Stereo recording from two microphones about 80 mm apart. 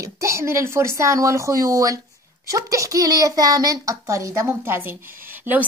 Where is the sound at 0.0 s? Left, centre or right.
Right.